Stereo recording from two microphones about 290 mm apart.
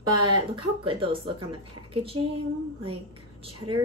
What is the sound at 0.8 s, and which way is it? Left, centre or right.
Speech, centre.